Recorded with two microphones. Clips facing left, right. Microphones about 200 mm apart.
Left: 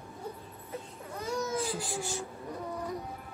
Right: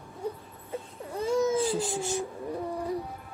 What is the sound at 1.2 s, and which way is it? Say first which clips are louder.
Baby cry: right 8 dB; 30° right (ahead or behind).